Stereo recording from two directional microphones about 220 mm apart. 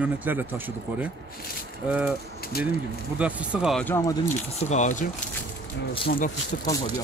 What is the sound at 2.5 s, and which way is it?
Speech, 45° left (ahead or behind).